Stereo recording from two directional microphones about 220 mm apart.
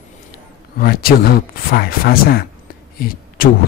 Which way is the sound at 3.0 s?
40° left (ahead or behind).